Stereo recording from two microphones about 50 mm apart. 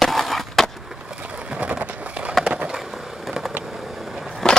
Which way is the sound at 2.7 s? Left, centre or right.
Centre.